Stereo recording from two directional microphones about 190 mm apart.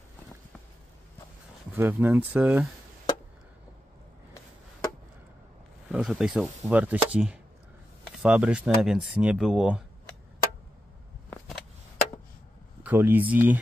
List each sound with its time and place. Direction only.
1.8 s speech: 10° right (ahead or behind)
5.9 s speech: 5° right (ahead or behind)
12.8 s speech: 10° right (ahead or behind)